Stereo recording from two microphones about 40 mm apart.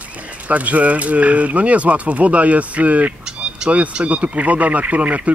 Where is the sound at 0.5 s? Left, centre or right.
Right.